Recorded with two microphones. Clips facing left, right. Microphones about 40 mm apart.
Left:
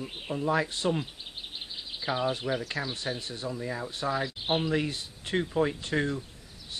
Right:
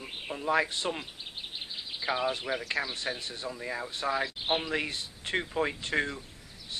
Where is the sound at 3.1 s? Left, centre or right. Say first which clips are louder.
Left 1 dB; right.